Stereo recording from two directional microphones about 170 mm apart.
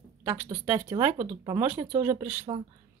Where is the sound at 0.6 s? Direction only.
10° right (ahead or behind).